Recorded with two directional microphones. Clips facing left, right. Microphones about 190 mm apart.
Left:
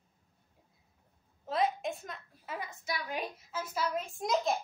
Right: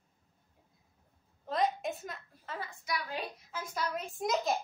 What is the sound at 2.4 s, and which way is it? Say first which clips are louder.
Speech: left 2 dB; 15° left (ahead or behind).